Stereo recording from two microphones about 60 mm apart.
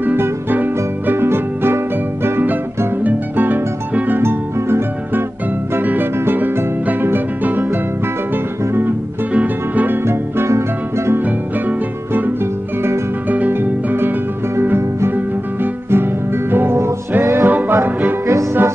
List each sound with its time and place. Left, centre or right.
0.0 s music: right
4.2 s music: right
9.3 s music: right
11.1 s music: right
14.8 s music: right
15.1 s music: right
17.5 s music: right
18.2 s music: right